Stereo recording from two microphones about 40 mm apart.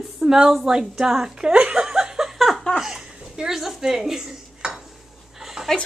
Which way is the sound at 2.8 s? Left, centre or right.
Centre.